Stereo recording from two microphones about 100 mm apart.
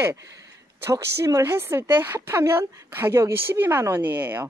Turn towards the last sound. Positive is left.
turn(degrees=-20)  # may be behind; listen again after turning